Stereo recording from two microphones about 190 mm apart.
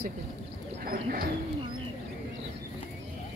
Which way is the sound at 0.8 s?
50° right (ahead or behind).